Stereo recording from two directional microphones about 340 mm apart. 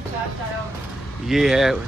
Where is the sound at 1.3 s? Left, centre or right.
Centre.